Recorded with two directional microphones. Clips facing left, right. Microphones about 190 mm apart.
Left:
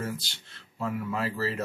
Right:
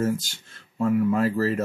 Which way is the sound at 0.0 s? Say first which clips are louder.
Right 10 dB; 45° right (ahead or behind).